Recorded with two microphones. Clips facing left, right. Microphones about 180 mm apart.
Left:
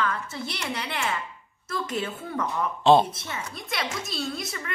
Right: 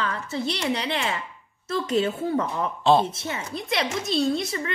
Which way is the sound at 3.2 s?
30° right (ahead or behind).